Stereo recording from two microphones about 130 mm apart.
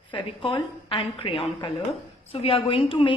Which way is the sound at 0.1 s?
40° left (ahead or behind).